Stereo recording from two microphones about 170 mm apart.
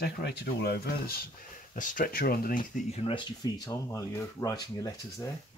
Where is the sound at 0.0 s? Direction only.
75° left (ahead or behind); by 2.8 s 60° left (ahead or behind).